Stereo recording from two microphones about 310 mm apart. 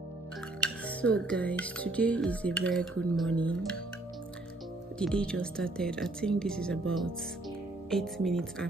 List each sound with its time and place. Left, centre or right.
0.6 s speech: centre
4.9 s speech: centre